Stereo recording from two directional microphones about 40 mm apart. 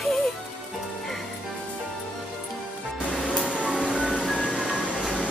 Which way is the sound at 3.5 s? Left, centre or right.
Right.